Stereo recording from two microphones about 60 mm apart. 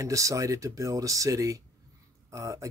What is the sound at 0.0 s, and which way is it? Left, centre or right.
Speech, right.